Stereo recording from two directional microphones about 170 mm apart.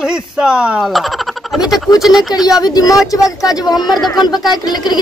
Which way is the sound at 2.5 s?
25° left (ahead or behind).